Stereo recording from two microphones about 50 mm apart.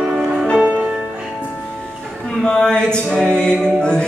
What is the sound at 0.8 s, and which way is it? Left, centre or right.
Music, centre.